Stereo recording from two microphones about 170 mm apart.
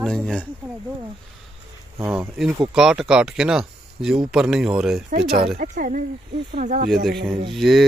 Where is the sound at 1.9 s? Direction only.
15° right (ahead or behind).